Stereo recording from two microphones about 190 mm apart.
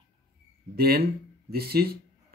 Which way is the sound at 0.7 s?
55° right (ahead or behind).